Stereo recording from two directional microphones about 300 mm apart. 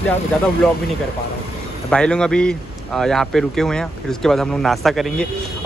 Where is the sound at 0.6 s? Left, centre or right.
Centre.